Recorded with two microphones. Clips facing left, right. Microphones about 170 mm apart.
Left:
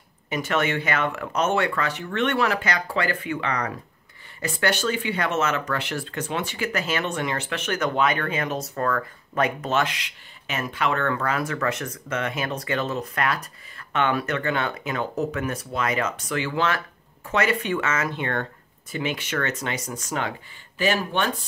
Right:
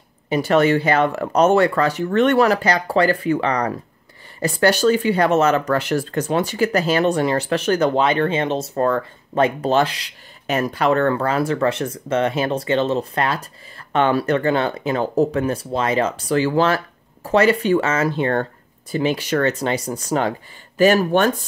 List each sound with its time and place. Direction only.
0.3 s speech: 35° right (ahead or behind)